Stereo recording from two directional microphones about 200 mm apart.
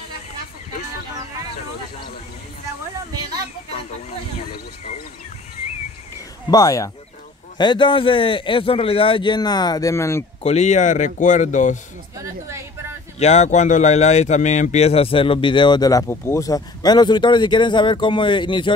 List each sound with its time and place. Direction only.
6.5 s speech: 15° left (ahead or behind)
10.4 s speech: 35° left (ahead or behind)
12.2 s a woman's voice: 15° right (ahead or behind)
13.2 s speech: 35° left (ahead or behind)